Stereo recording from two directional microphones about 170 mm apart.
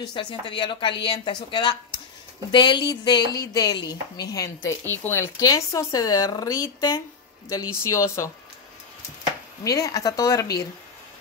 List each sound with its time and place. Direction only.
0.0 s speech: 30° left (ahead or behind)
9.7 s speech: 20° left (ahead or behind)